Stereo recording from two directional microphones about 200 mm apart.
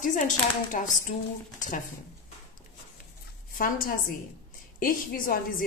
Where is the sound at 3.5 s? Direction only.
45° left (ahead or behind).